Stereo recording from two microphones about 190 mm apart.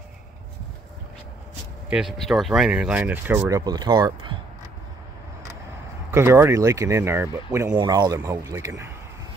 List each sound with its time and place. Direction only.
1.9 s speech: 5° right (ahead or behind); by 4.4 s 25° right (ahead or behind)
6.1 s speech: 15° right (ahead or behind)